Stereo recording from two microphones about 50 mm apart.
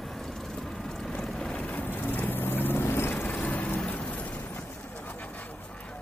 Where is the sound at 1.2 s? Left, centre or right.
Centre.